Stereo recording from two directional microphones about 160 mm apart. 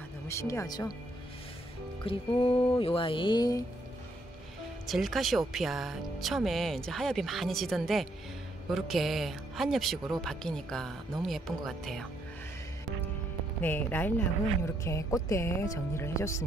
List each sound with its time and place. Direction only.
0.3 s speech: 20° left (ahead or behind)
2.0 s speech: 35° left (ahead or behind)
4.8 s speech: centre (ahead or behind)
13.6 s speech: 10° left (ahead or behind)